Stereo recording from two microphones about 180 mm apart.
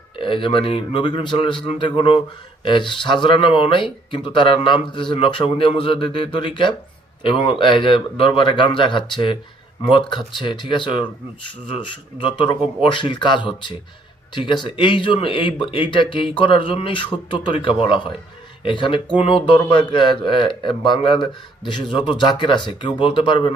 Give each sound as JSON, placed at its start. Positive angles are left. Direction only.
{"t": 0.2, "sound": "speech", "side_deg": 30}